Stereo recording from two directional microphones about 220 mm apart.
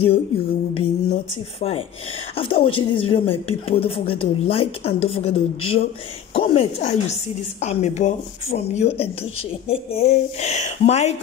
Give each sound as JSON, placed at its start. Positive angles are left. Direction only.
{"t": 0.7, "sound": "a woman's voice", "side_deg": 25}